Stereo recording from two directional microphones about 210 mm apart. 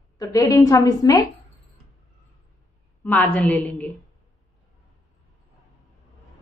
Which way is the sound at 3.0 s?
10° left (ahead or behind).